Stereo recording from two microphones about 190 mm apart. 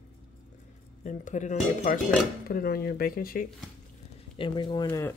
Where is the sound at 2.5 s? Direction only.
50° left (ahead or behind).